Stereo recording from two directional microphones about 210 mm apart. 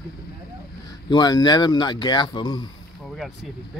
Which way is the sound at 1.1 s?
20° left (ahead or behind).